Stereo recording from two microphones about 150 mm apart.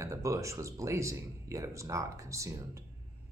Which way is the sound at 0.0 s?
20° right (ahead or behind).